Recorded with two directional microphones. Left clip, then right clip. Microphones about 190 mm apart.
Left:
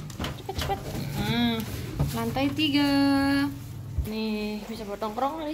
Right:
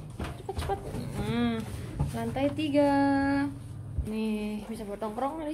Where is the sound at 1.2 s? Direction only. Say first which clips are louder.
Left 4 dB; 10° right (ahead or behind).